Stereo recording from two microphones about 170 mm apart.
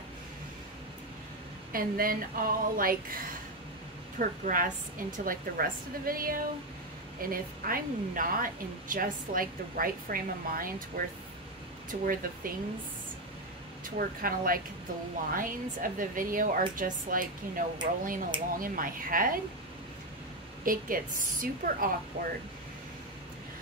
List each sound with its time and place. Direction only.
1.7 s a woman's voice: 55° right (ahead or behind)
13.8 s a woman's voice: 55° right (ahead or behind)
20.6 s a woman's voice: 55° right (ahead or behind)